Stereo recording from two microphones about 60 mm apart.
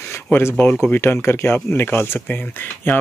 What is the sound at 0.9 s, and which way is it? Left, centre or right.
Speech, left.